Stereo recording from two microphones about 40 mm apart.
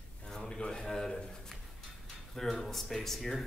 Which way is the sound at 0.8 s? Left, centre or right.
Centre.